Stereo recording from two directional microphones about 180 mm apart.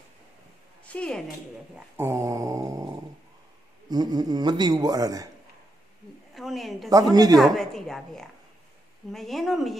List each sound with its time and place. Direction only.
0.8 s speech: 5° left (ahead or behind)
1.8 s dog: 15° right (ahead or behind)
3.9 s speech: 20° right (ahead or behind)
6.3 s speech: centre (ahead or behind)
6.9 s speech: 20° right (ahead or behind)
7.3 s speech: centre (ahead or behind)